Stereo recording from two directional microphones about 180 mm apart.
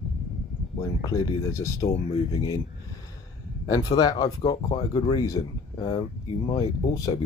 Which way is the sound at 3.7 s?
20° left (ahead or behind).